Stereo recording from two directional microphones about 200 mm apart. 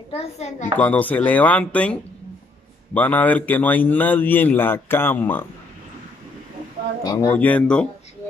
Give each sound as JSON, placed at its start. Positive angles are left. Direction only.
{"t": 0.1, "sound": "a child's voice", "side_deg": 35}
{"t": 0.7, "sound": "a man's voice", "side_deg": 10}
{"t": 7.0, "sound": "speech", "side_deg": 20}
{"t": 7.3, "sound": "speech", "side_deg": 5}